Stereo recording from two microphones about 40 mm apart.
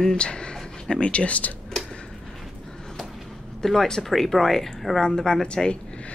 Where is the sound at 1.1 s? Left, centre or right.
Left.